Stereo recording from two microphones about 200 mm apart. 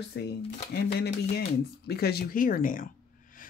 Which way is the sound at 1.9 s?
50° left (ahead or behind).